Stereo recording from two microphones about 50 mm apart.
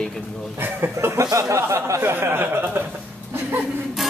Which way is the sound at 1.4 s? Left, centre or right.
Right.